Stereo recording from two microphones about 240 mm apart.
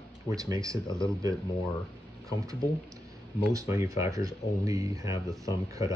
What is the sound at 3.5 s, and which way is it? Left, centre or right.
Speech, centre.